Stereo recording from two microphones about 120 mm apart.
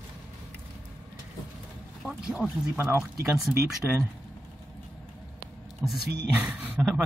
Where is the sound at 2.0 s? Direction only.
5° right (ahead or behind).